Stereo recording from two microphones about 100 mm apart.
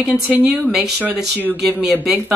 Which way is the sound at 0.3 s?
5° right (ahead or behind).